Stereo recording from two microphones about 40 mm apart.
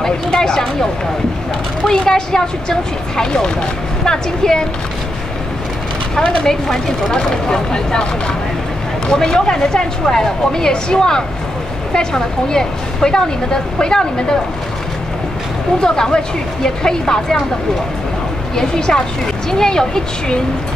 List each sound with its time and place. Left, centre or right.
0.0 s speech: centre
1.9 s a woman's voice: centre
6.1 s speech: centre
15.8 s speech: centre
18.6 s speech: centre